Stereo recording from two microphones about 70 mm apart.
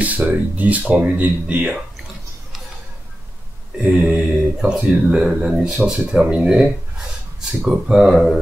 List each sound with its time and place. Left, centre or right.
0.0 s speech: right
3.8 s speech: right
4.6 s speech: centre